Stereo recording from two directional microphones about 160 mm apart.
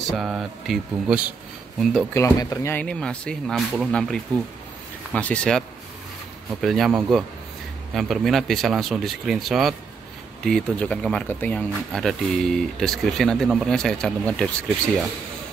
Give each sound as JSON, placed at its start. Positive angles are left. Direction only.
{"t": 0.0, "sound": "speech", "side_deg": 0}
{"t": 2.1, "sound": "speech", "side_deg": 20}
{"t": 6.6, "sound": "speech", "side_deg": 0}